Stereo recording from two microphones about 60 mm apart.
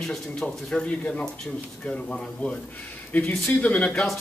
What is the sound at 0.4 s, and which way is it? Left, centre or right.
Speech, centre.